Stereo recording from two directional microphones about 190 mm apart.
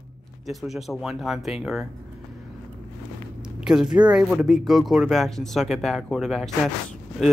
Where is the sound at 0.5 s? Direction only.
Centre (ahead or behind).